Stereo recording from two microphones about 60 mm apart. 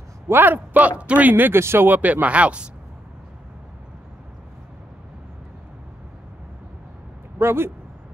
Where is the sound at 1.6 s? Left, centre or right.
Right.